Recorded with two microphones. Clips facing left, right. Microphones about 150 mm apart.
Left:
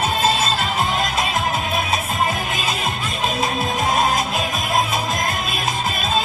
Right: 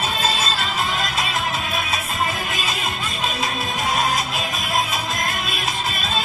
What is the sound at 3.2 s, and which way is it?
Music, 50° left (ahead or behind).